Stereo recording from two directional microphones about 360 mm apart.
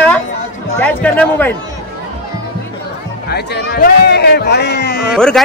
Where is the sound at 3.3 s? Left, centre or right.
Left.